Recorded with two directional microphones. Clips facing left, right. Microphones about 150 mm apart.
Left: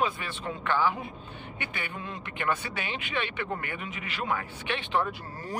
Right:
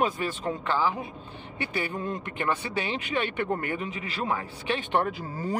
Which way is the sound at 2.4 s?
30° right (ahead or behind).